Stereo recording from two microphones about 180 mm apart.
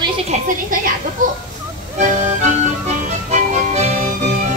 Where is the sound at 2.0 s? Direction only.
40° right (ahead or behind).